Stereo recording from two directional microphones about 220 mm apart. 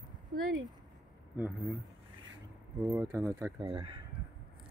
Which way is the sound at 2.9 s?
15° right (ahead or behind).